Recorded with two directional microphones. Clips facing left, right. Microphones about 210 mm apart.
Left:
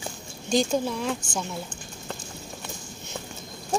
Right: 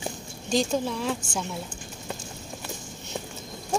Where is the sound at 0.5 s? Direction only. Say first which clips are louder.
Left 1 dB; centre (ahead or behind).